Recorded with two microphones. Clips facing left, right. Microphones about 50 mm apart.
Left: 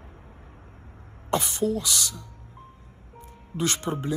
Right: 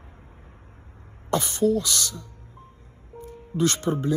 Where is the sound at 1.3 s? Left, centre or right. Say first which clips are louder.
Right 3 dB; left.